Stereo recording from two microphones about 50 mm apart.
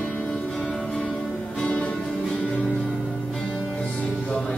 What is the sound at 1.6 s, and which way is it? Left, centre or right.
Music, left.